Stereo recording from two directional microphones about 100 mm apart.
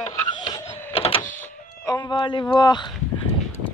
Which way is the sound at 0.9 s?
70° left (ahead or behind).